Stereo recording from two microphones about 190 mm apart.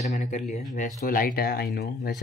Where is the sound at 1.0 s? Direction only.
50° left (ahead or behind).